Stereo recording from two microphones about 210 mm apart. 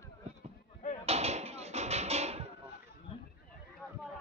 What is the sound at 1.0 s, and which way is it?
Tap, 30° right (ahead or behind).